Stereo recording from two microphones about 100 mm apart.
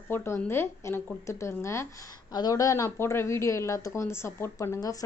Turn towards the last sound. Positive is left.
turn(degrees=25)  # may be behind; listen again after turning